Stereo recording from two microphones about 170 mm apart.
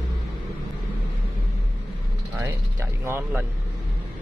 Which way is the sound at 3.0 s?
15° right (ahead or behind).